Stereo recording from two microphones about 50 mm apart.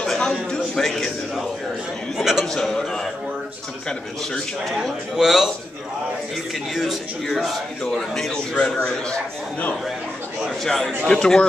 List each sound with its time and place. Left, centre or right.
0.0 s a sound: centre
2.1 s chatter: centre
2.4 s a sound: centre
5.1 s a man's voice: centre
6.7 s a man's voice: centre
7.8 s speech: centre
10.6 s speech: centre